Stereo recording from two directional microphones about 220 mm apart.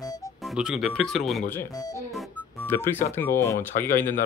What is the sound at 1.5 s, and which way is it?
Speech, 15° left (ahead or behind).